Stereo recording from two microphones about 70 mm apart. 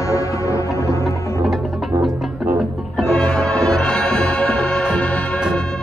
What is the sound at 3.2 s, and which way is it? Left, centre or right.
Music, centre.